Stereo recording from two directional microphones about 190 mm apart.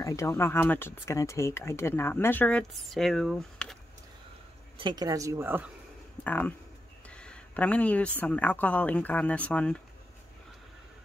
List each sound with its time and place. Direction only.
0.0 s speech: 15° left (ahead or behind)
4.7 s a woman's voice: 25° right (ahead or behind)
6.2 s speech: 10° left (ahead or behind)
7.1 s a sound: 5° left (ahead or behind)
8.2 s speech: 5° left (ahead or behind)